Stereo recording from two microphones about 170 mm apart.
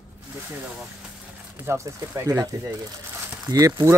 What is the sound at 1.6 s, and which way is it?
Speech, 15° right (ahead or behind).